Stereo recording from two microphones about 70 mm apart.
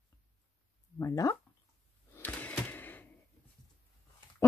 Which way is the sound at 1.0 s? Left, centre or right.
Left.